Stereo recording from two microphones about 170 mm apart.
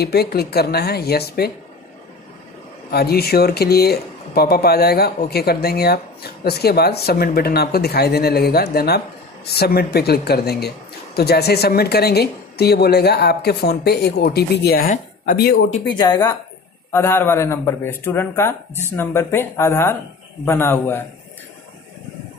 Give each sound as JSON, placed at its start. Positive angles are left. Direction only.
{"t": 0.0, "sound": "speech", "side_deg": 70}
{"t": 2.9, "sound": "speech", "side_deg": 65}
{"t": 16.0, "sound": "speech", "side_deg": 20}